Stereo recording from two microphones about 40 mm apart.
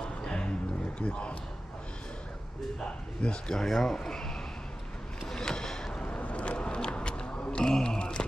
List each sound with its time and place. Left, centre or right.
0.2 s music: left
0.9 s a man's voice: left
2.8 s a man's voice: left
3.5 s speech: centre
5.3 s a sound: centre
6.0 s vehicle: left
7.6 s a sound: centre